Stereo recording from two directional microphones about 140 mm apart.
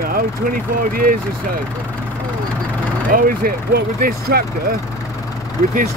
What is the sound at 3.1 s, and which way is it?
Speech, 90° right.